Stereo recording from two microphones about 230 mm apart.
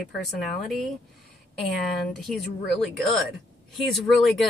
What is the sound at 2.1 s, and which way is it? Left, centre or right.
Speech, centre.